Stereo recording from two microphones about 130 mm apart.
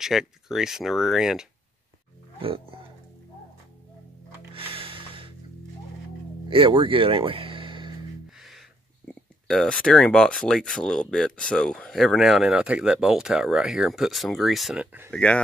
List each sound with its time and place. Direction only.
0.0 s speech: 5° right (ahead or behind)
4.6 s a sound: 45° right (ahead or behind)
6.5 s speech: 40° right (ahead or behind)
8.4 s a sound: centre (ahead or behind)
9.0 s speech: 5° left (ahead or behind); by 15.0 s 10° right (ahead or behind)
15.0 s speech: 10° left (ahead or behind)